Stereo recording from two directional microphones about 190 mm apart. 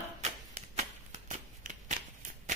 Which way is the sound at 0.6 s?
35° right (ahead or behind).